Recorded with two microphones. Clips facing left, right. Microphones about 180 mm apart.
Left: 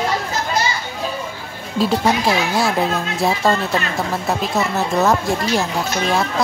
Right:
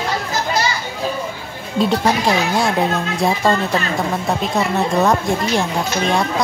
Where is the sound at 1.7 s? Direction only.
Centre (ahead or behind).